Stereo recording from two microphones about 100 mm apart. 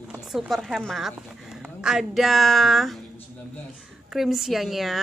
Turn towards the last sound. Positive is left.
turn(degrees=0)  # may be behind; listen again after turning